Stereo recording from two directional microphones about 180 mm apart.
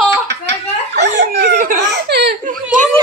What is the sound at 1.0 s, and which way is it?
Speech, 70° right (ahead or behind).